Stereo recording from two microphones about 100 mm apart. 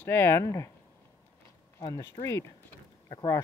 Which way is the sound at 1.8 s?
40° left (ahead or behind).